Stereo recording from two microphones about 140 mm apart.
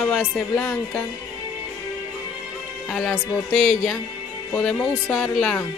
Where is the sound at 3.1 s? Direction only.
5° left (ahead or behind).